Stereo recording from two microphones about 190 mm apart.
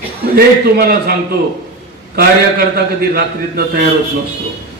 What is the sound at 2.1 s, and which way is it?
A man's voice, 50° right (ahead or behind).